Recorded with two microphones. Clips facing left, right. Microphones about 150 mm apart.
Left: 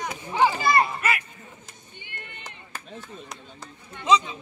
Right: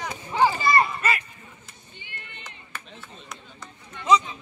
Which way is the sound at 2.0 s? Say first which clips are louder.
Left 2 dB; 50° left (ahead or behind).